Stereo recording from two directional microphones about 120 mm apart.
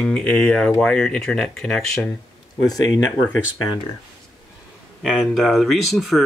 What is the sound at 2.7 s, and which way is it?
Speech, 30° left (ahead or behind).